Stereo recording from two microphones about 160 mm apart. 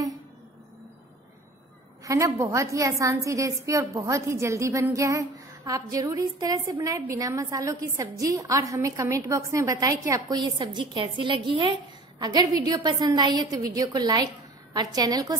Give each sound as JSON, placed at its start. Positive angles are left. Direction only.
{"t": 2.0, "sound": "a woman's voice", "side_deg": -20}